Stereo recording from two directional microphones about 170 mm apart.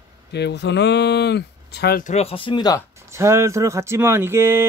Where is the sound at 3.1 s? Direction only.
15° right (ahead or behind).